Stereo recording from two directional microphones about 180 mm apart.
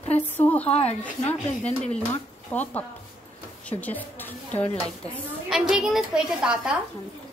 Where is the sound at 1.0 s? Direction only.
5° left (ahead or behind).